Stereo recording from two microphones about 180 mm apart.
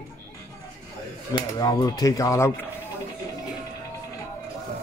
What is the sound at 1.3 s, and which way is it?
Speech, 25° left (ahead or behind).